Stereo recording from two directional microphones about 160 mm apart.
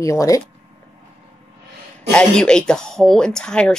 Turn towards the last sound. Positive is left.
turn(degrees=5)  # may be behind; listen again after turning